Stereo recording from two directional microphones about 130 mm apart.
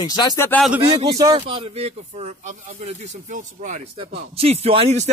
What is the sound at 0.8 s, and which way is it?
Speech, 45° right (ahead or behind).